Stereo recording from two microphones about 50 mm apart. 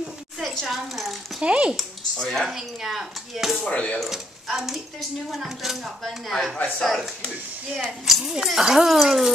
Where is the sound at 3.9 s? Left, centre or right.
Centre.